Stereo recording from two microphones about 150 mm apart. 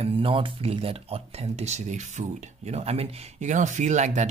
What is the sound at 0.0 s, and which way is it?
Speech, 35° right (ahead or behind).